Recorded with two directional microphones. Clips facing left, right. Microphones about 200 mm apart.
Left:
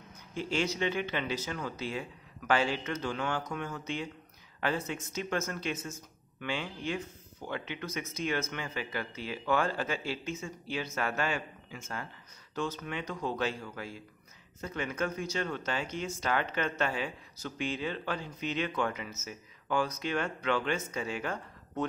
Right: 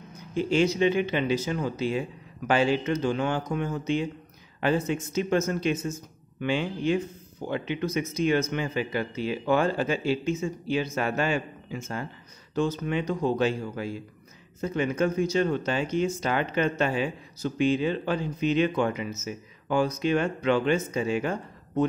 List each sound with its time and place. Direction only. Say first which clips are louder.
0.3 s speech: right 9 dB; 20° right (ahead or behind)